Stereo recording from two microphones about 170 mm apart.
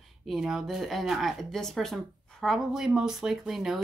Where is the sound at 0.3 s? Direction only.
5° right (ahead or behind).